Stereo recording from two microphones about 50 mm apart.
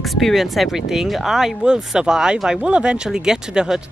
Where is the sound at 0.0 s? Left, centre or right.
Centre.